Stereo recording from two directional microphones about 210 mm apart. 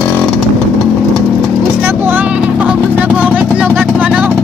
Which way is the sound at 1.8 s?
10° right (ahead or behind).